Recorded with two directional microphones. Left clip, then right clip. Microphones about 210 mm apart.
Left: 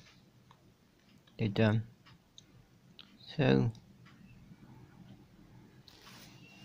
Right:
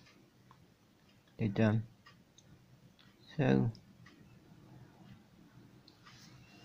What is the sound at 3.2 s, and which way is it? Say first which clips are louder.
Speech: left 3 dB; centre (ahead or behind).